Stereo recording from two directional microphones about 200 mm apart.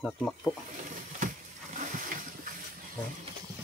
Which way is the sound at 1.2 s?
40° right (ahead or behind).